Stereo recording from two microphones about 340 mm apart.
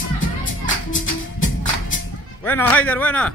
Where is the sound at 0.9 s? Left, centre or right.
Left.